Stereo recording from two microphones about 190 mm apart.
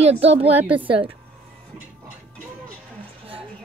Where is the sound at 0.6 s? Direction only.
10° right (ahead or behind).